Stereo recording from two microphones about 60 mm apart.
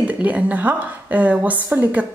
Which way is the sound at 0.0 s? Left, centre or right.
Right.